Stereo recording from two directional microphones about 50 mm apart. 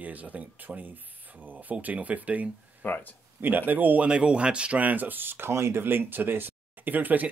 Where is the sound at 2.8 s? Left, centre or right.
Left.